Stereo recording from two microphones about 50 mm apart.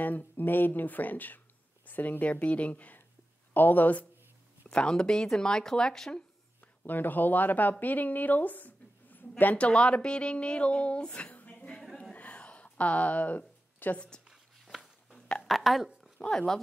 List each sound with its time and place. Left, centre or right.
0.0 s speech: left
4.7 s speech: centre
6.8 s a woman's voice: left
9.6 s speech: left
12.1 s a sound: left
15.1 s a sound: centre
15.4 s speech: centre
16.2 s speech: centre